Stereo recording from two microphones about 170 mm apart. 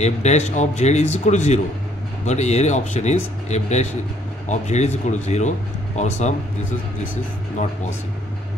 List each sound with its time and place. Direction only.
0.0 s speech: 40° left (ahead or behind)